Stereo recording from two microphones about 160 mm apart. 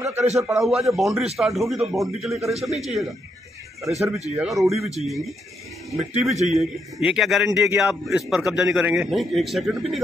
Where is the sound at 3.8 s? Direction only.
Centre (ahead or behind).